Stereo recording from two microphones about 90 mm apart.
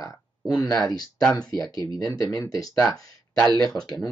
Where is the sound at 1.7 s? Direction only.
60° right (ahead or behind).